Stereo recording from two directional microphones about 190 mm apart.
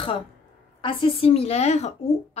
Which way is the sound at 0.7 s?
30° left (ahead or behind).